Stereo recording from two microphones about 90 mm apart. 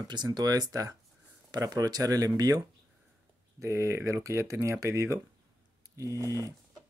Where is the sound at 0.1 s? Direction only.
55° right (ahead or behind).